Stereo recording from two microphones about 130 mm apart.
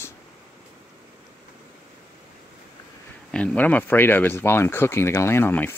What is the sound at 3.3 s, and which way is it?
Speech, 10° left (ahead or behind).